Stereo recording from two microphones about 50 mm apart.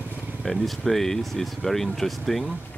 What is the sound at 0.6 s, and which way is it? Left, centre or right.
Speech, centre.